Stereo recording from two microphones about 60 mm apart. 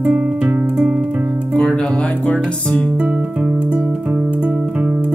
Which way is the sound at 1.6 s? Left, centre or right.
Centre.